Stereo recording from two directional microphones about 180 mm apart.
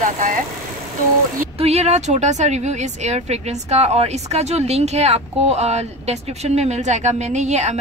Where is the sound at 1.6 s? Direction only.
35° right (ahead or behind).